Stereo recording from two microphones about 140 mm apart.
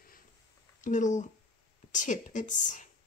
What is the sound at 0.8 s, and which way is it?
Speech, 65° left (ahead or behind).